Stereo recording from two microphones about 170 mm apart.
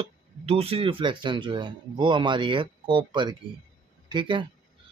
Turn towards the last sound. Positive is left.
turn(degrees=-25)  # may be behind; listen again after turning